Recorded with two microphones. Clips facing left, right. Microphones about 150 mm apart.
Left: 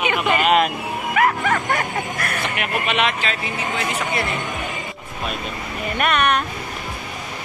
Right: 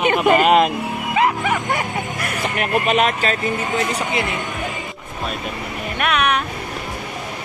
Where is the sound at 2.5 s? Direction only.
40° right (ahead or behind).